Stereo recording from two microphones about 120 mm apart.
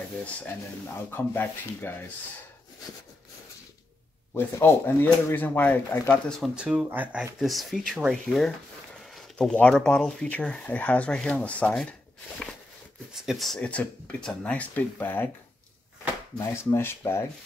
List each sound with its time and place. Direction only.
1.1 s speech: 20° left (ahead or behind)
4.3 s speech: 20° left (ahead or behind)
6.5 s speech: 10° right (ahead or behind); by 11.9 s 10° left (ahead or behind)
13.1 s speech: 5° right (ahead or behind); by 15.2 s 15° left (ahead or behind)
16.5 s speech: 20° left (ahead or behind)